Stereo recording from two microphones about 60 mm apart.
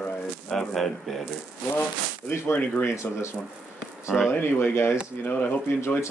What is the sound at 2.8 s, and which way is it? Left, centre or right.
Speech, left.